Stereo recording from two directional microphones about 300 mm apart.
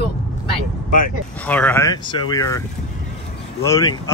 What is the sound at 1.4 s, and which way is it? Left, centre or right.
Speech, centre.